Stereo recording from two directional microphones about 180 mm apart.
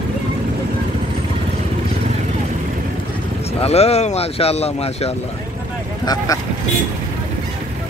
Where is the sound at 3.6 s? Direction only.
35° left (ahead or behind).